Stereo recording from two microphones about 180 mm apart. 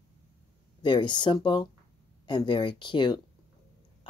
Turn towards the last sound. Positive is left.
turn(degrees=25)  # may be behind; listen again after turning